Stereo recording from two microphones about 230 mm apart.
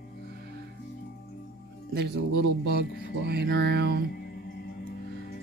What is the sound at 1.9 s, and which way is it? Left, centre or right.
Speech, right.